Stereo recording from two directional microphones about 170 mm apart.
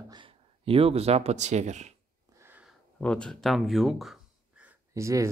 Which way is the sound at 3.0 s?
5° left (ahead or behind).